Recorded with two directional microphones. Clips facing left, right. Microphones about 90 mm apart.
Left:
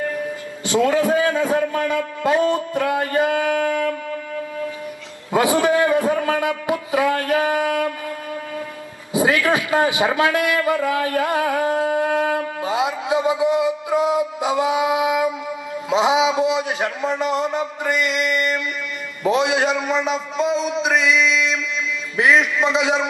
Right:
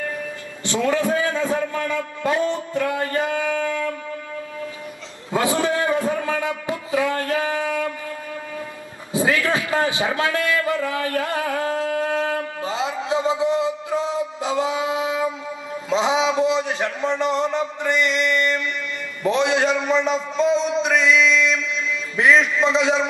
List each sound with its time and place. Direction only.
0.7 s a man's voice: 15° left (ahead or behind)
5.3 s a man's voice: 15° left (ahead or behind)
9.1 s a sound: 15° left (ahead or behind)
15.9 s a man's voice: 10° left (ahead or behind)
19.2 s a sound: 5° left (ahead or behind)
22.1 s a man's voice: 5° left (ahead or behind)